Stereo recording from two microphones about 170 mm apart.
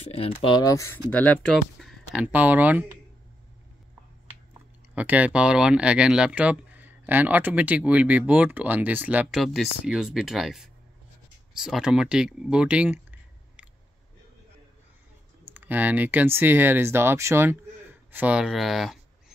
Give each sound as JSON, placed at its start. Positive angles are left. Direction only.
{"t": 0.1, "sound": "speech", "side_deg": 35}
{"t": 2.1, "sound": "speech", "side_deg": -10}
{"t": 4.9, "sound": "speech", "side_deg": -10}
{"t": 15.4, "sound": "speech", "side_deg": -10}